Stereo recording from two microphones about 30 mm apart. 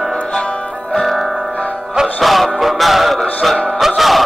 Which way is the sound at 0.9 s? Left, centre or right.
Centre.